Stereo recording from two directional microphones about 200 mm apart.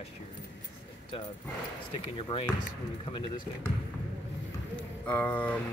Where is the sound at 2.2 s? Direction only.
25° left (ahead or behind).